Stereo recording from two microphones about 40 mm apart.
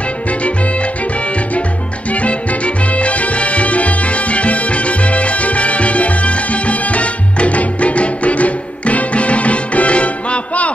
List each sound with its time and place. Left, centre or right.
2.2 s music: left